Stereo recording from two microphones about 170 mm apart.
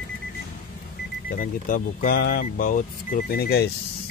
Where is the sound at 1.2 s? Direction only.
50° left (ahead or behind).